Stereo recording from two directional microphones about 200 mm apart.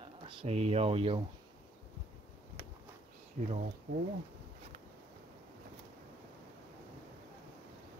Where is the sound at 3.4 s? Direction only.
45° right (ahead or behind).